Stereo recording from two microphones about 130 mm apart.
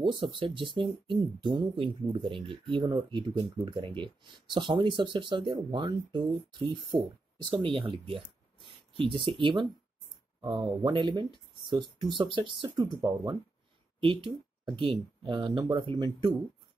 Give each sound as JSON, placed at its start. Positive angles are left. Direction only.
{"t": 0.0, "sound": "speech", "side_deg": -40}
{"t": 14.8, "sound": "speech", "side_deg": -40}